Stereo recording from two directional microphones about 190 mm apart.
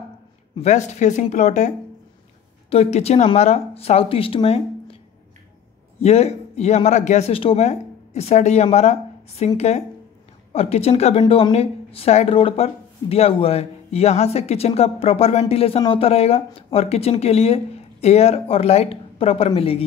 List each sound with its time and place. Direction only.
0.6 s a woman's voice: 35° left (ahead or behind)
2.7 s a woman's voice: 35° left (ahead or behind)
5.9 s a woman's voice: 35° left (ahead or behind)